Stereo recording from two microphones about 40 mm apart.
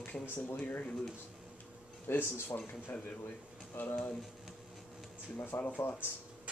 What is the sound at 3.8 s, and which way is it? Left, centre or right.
Speech, left.